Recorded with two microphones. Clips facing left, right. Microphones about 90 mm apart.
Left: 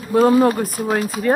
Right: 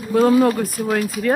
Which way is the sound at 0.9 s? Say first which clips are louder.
Left 1 dB; 20° left (ahead or behind).